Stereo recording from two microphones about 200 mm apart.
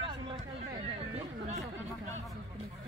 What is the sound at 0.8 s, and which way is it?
Chatter, 30° right (ahead or behind).